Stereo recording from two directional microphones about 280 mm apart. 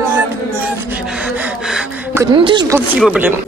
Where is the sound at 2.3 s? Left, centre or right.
Centre.